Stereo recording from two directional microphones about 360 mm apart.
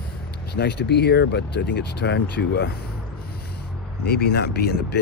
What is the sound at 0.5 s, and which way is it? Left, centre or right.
Speech, left.